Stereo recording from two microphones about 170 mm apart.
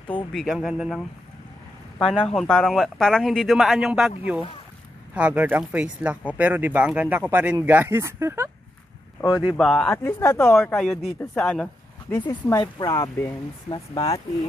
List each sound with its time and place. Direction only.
0.3 s speech: centre (ahead or behind)
5.1 s speech: 10° right (ahead or behind)
9.2 s speech: 25° left (ahead or behind)
9.5 s speech: centre (ahead or behind)
10.0 s speech: 15° left (ahead or behind)
12.1 s speech: 20° left (ahead or behind)